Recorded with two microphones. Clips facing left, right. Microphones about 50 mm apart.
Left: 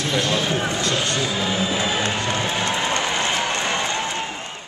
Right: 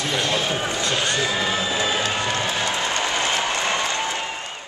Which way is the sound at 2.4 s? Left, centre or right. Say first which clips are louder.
Left 1 dB; centre.